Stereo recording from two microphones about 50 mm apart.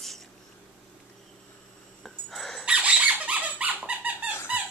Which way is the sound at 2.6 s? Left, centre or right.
Right.